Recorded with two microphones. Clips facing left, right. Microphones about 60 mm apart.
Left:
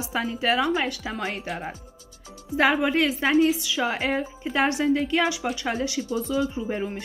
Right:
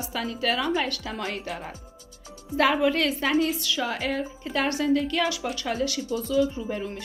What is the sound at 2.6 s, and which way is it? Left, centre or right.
Speech, centre.